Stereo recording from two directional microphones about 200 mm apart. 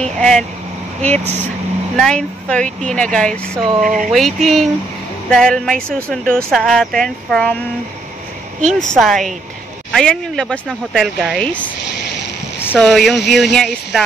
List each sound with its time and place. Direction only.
0.0 s speech: 5° left (ahead or behind)
2.0 s speech: 5° left (ahead or behind)
3.8 s speech: 40° right (ahead or behind)
4.1 s speech: centre (ahead or behind)
8.7 s speech: centre (ahead or behind)
12.5 s a sound: 10° left (ahead or behind)
12.8 s speech: centre (ahead or behind)